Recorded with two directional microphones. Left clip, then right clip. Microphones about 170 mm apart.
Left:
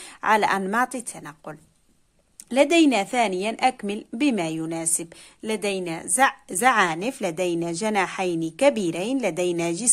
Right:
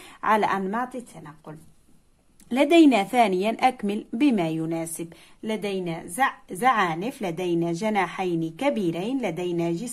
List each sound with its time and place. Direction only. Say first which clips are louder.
0.0 s a woman's voice: left 2 dB; 20° left (ahead or behind)
0.7 s a woman's voice: left 5 dB; 40° left (ahead or behind)
2.5 s a woman's voice: even; 20° left (ahead or behind); by 9.8 s 40° left (ahead or behind)